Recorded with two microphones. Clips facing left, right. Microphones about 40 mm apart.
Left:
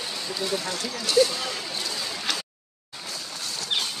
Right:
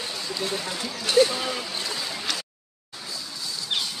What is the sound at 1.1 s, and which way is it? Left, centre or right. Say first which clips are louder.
Speech: right 1 dB; right.